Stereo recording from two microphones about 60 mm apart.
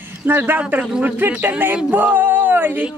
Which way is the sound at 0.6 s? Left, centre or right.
Right.